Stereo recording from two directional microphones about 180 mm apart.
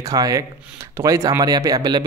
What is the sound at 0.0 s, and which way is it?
A man's voice, 20° right (ahead or behind).